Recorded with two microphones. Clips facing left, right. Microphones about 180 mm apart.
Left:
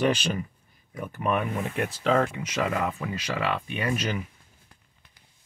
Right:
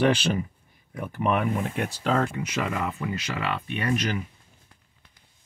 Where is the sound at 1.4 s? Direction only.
Centre (ahead or behind).